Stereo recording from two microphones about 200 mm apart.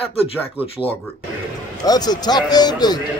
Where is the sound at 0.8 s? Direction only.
Centre (ahead or behind).